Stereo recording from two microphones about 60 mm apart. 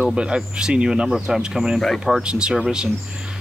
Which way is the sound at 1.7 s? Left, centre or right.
Centre.